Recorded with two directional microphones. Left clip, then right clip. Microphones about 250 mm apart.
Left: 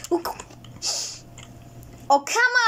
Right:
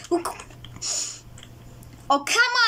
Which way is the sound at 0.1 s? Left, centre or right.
Right.